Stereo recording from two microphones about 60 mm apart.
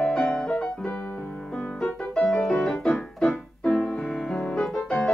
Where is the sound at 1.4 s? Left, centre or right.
Centre.